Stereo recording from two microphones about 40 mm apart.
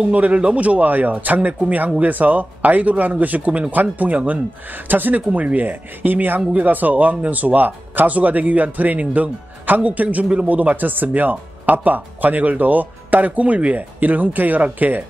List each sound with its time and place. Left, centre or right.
0.1 s a man's voice: right
13.7 s speech: right